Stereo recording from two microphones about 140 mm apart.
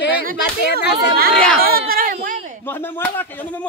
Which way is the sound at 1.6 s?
90° right.